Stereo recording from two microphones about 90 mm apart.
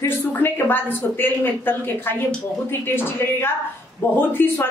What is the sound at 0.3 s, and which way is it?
A woman's voice, 25° left (ahead or behind).